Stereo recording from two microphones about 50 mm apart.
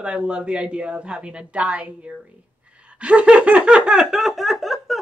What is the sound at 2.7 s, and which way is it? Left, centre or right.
Laughter, right.